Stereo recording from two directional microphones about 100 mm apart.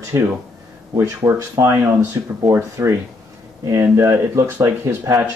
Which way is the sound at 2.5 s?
30° right (ahead or behind).